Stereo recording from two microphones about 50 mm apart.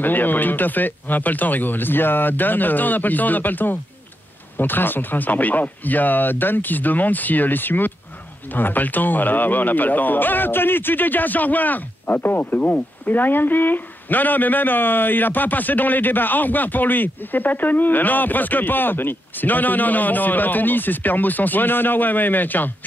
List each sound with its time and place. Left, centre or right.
0.0 s speech: left